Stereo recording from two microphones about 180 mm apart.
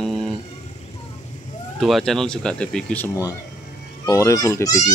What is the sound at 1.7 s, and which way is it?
A child's voice, centre (ahead or behind).